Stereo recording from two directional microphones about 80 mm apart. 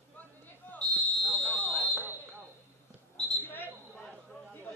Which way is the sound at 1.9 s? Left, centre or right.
Right.